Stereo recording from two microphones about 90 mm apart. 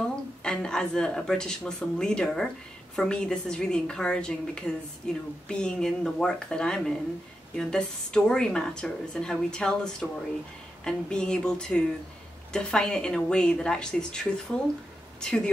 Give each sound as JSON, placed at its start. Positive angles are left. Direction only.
{"t": 0.0, "sound": "a woman's voice", "side_deg": 10}